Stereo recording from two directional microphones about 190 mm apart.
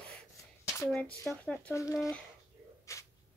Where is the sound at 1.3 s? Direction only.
10° left (ahead or behind).